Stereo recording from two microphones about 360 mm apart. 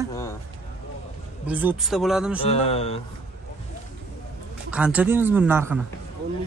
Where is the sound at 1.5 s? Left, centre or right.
Centre.